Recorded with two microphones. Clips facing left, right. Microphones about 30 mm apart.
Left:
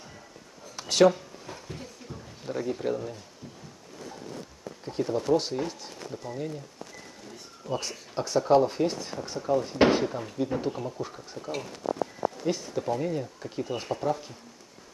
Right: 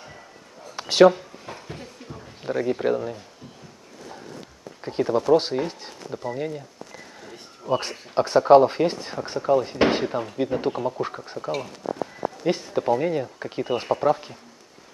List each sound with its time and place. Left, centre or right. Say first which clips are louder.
0.7 s a sound: right 5 dB; right
2.4 s speech: right 7 dB; right
4.8 s speech: right 6 dB; right